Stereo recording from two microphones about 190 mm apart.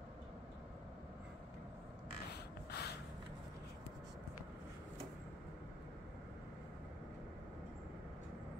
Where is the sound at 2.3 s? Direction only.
60° left (ahead or behind).